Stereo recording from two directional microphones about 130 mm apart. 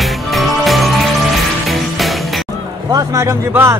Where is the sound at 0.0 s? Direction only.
Centre (ahead or behind).